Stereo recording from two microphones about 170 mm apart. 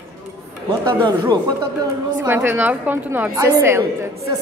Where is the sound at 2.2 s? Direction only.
10° right (ahead or behind).